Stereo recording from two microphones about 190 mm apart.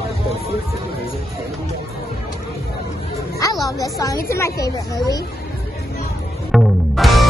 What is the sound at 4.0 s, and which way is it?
Speech, 15° left (ahead or behind).